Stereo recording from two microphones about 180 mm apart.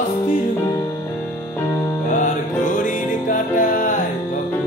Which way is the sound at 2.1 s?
45° left (ahead or behind).